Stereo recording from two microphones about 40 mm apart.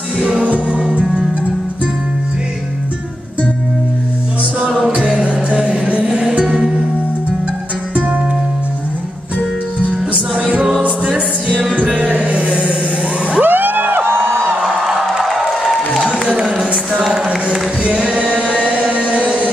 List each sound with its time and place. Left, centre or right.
0.2 s music: right
4.6 s music: right
4.9 s music: right
10.8 s music: right
13.4 s music: right
14.0 s music: right
14.6 s music: centre
16.1 s music: right
17.5 s singing: right
18.8 s a sound: right